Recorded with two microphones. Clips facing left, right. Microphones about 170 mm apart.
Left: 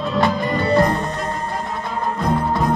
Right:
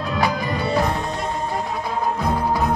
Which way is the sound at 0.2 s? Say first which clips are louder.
Left 3 dB; centre (ahead or behind).